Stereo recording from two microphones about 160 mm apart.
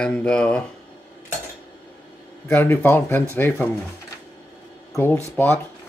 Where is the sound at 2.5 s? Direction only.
10° left (ahead or behind).